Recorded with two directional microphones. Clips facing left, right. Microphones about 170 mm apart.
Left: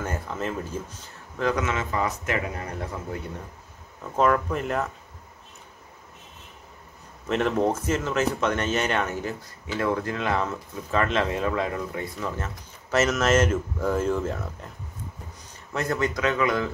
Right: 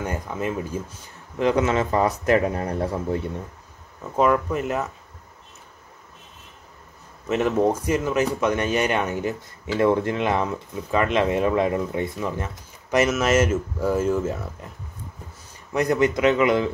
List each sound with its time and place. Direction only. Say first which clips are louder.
0.0 s speech: right 3 dB; 10° right (ahead or behind)
1.4 s speech: right 5 dB; 30° right (ahead or behind)
4.0 s speech: right 2 dB; 5° right (ahead or behind)
7.2 s speech: right 3 dB; 5° right (ahead or behind); by 12.3 s 25° right (ahead or behind)
12.9 s speech: right 2 dB; 10° right (ahead or behind)
15.7 s speech: right 6 dB; 15° right (ahead or behind)